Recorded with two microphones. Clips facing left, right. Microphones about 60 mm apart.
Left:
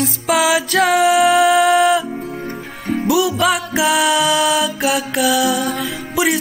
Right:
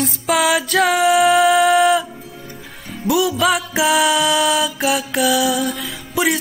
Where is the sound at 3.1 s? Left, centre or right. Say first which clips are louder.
Even; centre.